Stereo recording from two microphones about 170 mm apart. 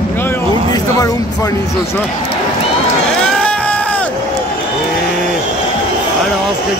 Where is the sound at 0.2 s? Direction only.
15° left (ahead or behind).